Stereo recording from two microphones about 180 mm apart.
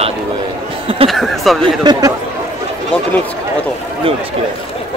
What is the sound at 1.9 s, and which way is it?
Speech, 20° right (ahead or behind).